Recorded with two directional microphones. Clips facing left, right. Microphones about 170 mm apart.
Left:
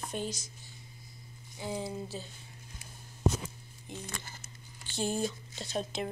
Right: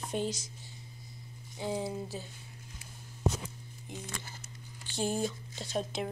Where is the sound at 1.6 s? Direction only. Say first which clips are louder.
Right 2 dB; 20° right (ahead or behind).